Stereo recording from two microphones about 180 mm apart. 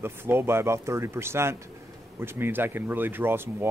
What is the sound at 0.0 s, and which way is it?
Speech, 15° right (ahead or behind).